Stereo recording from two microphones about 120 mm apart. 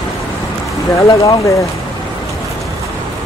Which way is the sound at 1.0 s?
25° left (ahead or behind).